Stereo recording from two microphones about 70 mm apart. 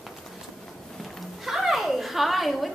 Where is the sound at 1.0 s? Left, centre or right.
Centre.